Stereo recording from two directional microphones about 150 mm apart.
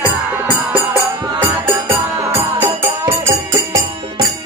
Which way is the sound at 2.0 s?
15° right (ahead or behind).